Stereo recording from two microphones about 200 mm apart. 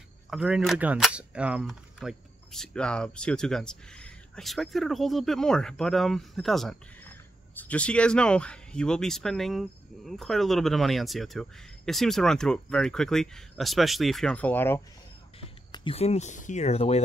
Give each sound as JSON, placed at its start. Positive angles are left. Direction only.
{"t": 0.3, "sound": "speech", "side_deg": 0}
{"t": 15.4, "sound": "speech", "side_deg": 25}